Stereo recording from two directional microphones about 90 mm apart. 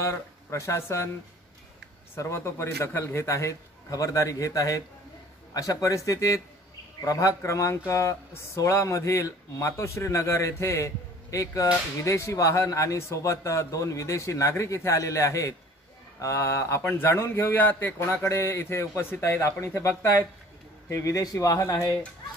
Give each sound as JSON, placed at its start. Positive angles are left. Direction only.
{"t": 0.0, "sound": "speech", "side_deg": 35}
{"t": 2.1, "sound": "a man's voice", "side_deg": 30}
{"t": 17.9, "sound": "a man's voice", "side_deg": 30}
{"t": 20.9, "sound": "a man's voice", "side_deg": 40}